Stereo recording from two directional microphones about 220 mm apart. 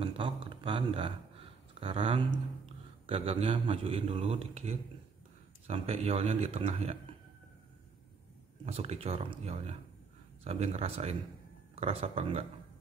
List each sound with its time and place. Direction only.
0.0 s speech: 20° right (ahead or behind)
8.6 s speech: 30° right (ahead or behind)